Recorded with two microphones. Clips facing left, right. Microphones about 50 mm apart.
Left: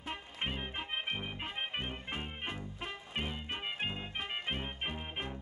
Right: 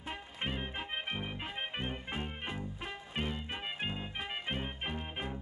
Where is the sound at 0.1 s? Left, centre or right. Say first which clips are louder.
Even; centre.